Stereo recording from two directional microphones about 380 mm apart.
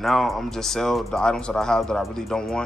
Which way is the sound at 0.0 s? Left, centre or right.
Centre.